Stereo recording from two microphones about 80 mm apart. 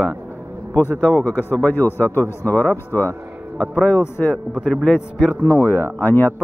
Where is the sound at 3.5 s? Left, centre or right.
Centre.